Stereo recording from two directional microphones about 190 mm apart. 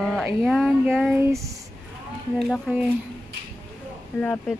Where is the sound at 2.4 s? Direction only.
Centre (ahead or behind).